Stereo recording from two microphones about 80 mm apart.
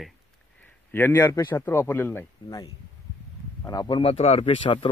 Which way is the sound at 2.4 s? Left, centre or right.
Left.